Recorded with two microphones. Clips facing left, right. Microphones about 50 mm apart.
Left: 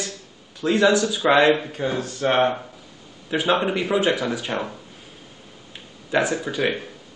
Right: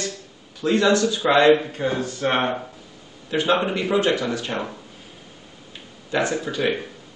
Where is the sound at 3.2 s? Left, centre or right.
Centre.